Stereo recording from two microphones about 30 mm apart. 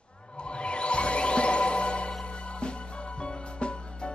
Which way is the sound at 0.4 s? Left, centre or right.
Left.